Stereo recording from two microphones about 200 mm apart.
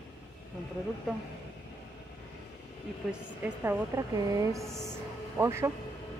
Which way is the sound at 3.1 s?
10° right (ahead or behind).